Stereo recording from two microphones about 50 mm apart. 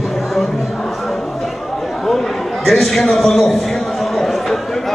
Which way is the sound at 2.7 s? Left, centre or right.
Centre.